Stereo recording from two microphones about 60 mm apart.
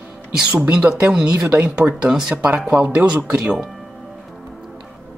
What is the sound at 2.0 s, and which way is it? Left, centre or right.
Speech, centre.